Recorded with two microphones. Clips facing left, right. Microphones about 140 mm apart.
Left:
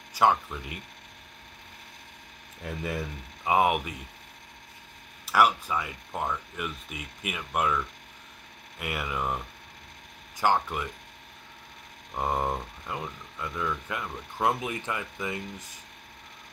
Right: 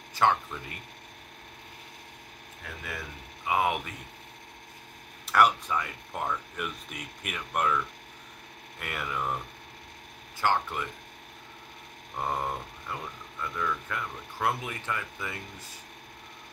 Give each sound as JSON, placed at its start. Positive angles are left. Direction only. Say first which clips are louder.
{"t": 0.1, "sound": "speech", "louder": "left 2 dB", "side_deg": 10}
{"t": 3.4, "sound": "speech", "louder": "left 4 dB", "side_deg": 20}
{"t": 5.2, "sound": "speech", "louder": "even", "side_deg": 5}
{"t": 10.4, "sound": "speech", "louder": "left 2 dB", "side_deg": 15}
{"t": 12.2, "sound": "speech", "louder": "left 3 dB", "side_deg": 15}